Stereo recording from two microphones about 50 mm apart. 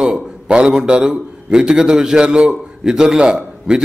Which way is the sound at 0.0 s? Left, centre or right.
Centre.